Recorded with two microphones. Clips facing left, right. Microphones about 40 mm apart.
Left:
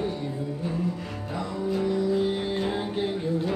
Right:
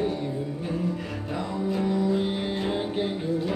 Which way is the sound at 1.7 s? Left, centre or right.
Centre.